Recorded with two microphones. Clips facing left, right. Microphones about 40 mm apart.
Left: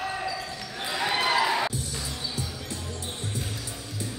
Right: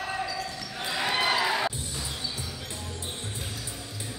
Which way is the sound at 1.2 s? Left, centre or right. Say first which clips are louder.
Left 3 dB; centre.